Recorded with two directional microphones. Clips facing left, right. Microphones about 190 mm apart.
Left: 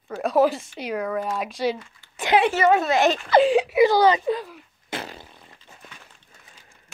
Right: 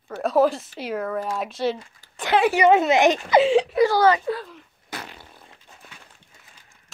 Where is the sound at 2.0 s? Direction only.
40° right (ahead or behind).